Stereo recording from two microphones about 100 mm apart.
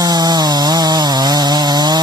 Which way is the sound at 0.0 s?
40° right (ahead or behind).